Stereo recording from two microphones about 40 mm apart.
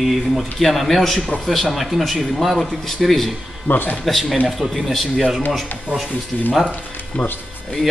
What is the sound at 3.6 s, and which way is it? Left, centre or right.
Speech, left.